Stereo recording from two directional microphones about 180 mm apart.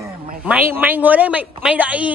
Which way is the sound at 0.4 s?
10° right (ahead or behind).